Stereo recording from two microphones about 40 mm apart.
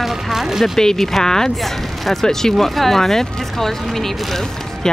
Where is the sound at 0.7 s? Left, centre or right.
Centre.